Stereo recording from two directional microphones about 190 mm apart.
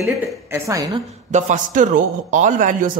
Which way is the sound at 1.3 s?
40° right (ahead or behind).